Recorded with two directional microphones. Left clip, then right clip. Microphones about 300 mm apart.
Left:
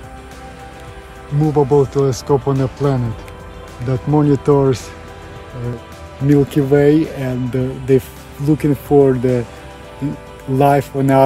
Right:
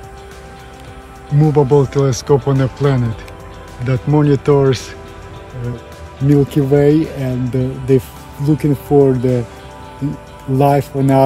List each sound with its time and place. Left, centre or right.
1.5 s speech: centre
6.2 s speech: centre
10.6 s speech: centre